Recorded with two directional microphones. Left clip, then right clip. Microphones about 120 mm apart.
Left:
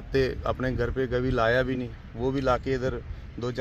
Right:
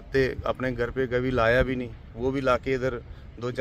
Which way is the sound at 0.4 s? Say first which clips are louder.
Right 1 dB; 10° right (ahead or behind).